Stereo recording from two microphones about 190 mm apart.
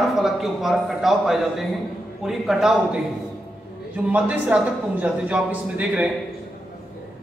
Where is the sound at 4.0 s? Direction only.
5° right (ahead or behind).